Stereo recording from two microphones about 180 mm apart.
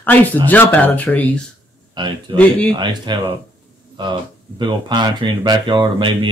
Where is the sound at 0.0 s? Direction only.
10° left (ahead or behind).